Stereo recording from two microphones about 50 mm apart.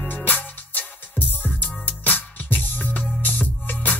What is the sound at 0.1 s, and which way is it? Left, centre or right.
Music, left.